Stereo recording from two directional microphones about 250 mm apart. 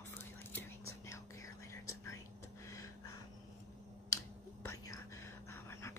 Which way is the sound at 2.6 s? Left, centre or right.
Centre.